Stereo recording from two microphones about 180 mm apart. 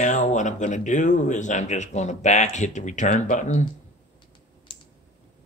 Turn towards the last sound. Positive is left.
turn(degrees=45)  # may be behind; listen again after turning